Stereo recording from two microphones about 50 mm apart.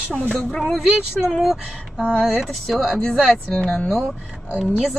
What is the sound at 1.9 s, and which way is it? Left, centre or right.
Speech, right.